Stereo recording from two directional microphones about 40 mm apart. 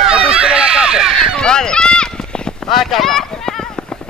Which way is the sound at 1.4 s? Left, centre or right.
Centre.